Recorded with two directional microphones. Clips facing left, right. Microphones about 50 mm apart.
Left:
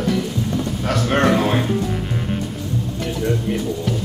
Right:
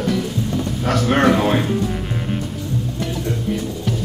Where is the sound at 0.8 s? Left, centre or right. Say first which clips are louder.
Right 2 dB; centre.